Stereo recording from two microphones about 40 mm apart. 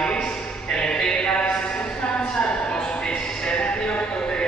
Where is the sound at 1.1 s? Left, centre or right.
Left.